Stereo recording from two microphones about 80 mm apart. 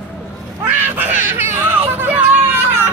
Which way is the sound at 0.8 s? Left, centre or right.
Right.